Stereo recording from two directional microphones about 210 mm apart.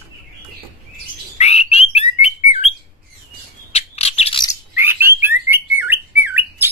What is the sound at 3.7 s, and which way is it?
Bird, 30° left (ahead or behind).